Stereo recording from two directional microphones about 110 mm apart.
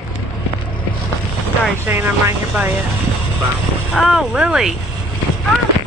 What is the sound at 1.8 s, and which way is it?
Speech, 20° right (ahead or behind).